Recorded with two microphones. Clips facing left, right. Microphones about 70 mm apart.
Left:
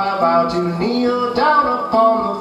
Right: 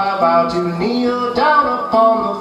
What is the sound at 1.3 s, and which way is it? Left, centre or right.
Music, right.